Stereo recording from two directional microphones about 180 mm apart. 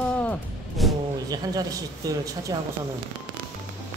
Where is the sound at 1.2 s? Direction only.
20° right (ahead or behind).